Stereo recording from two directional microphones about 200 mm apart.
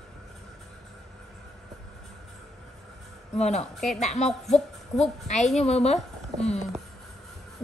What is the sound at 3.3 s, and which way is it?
A woman's voice, 35° left (ahead or behind).